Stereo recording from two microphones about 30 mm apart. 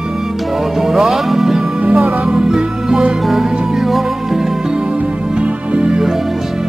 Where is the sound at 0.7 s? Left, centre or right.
Centre.